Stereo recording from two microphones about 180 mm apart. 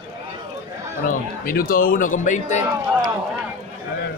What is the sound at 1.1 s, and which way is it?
Speech, 50° left (ahead or behind).